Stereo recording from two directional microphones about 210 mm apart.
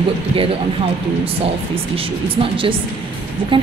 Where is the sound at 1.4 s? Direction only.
25° right (ahead or behind).